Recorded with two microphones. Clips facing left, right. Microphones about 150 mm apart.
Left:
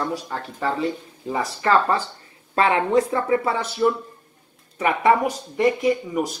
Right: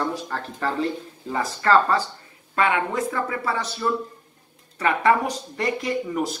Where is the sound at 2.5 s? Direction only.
30° left (ahead or behind); by 5.1 s 15° left (ahead or behind).